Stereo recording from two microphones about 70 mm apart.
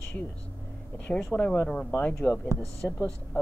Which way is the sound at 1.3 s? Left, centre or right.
Left.